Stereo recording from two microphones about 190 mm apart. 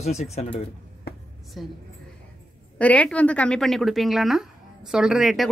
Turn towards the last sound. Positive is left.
turn(degrees=0)  # may be behind; listen again after turning